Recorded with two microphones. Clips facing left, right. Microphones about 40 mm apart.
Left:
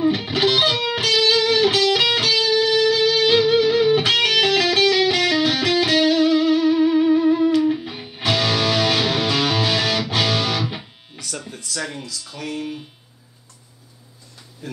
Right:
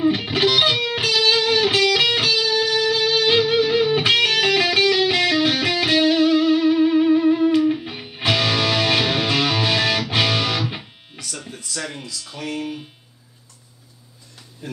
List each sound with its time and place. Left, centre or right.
0.0 s music: centre
10.8 s music: centre
11.9 s speech: centre
14.6 s speech: right